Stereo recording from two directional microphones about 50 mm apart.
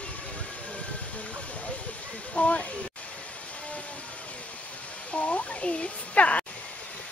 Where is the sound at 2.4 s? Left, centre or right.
Left.